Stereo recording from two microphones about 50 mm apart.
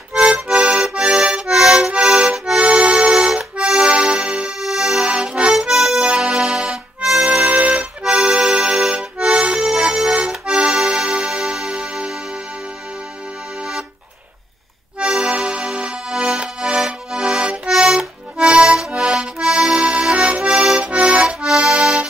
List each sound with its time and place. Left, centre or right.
0.1 s accordion: right
1.5 s accordion: centre
2.3 s accordion: centre
2.6 s accordion: right
4.6 s music: centre
5.3 s accordion: right
5.6 s accordion: centre
5.9 s accordion: centre
7.5 s music: right
8.1 s accordion: right
11.6 s tick-tock: centre
15.0 s accordion: right
21.3 s accordion: centre